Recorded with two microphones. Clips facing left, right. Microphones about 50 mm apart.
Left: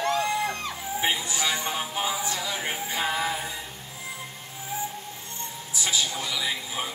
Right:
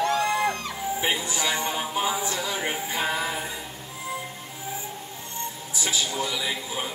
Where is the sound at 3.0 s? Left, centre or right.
Centre.